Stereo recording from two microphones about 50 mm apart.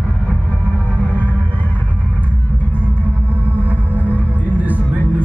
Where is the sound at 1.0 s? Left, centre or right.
Left.